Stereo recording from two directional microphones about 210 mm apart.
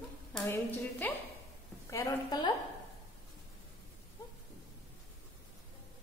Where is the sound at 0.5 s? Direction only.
10° left (ahead or behind).